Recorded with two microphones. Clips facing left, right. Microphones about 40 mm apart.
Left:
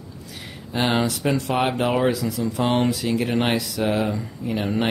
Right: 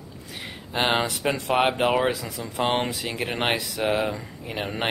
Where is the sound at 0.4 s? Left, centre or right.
Right.